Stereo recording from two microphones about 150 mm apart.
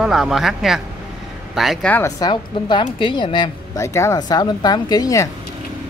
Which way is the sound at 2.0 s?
25° left (ahead or behind).